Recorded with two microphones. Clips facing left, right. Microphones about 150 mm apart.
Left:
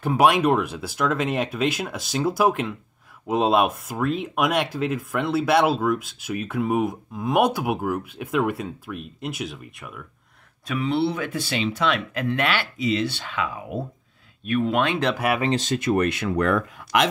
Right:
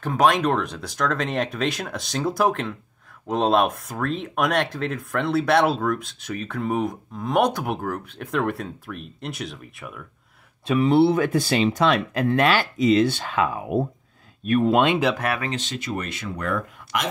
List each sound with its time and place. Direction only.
0.0 s speech: 10° left (ahead or behind)
10.9 s speech: 45° right (ahead or behind)
15.1 s speech: 10° left (ahead or behind)
15.5 s speech: 45° left (ahead or behind); by 17.1 s 75° left (ahead or behind)